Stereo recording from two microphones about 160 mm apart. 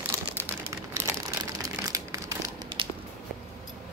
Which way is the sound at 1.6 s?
20° right (ahead or behind).